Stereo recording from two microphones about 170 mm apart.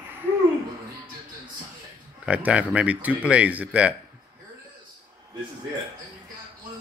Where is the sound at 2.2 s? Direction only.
5° right (ahead or behind).